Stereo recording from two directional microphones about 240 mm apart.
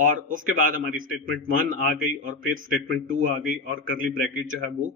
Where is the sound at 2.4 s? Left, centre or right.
Right.